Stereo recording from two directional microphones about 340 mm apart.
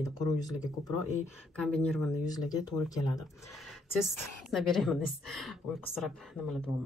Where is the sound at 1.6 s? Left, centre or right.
Centre.